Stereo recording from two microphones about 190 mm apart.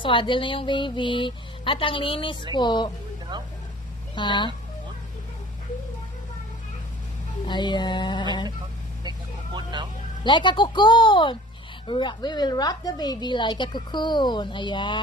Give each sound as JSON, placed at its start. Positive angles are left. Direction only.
{"t": 0.0, "sound": "a woman's voice", "side_deg": 25}
{"t": 4.1, "sound": "speech", "side_deg": 25}
{"t": 7.4, "sound": "a woman's voice", "side_deg": 25}
{"t": 9.0, "sound": "vehicle", "side_deg": -25}
{"t": 10.2, "sound": "a woman's voice", "side_deg": 25}